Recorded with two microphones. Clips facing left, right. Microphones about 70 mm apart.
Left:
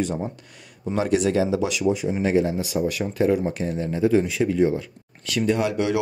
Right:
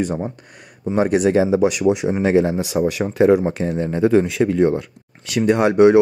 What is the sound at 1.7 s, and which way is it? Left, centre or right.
Speech, right.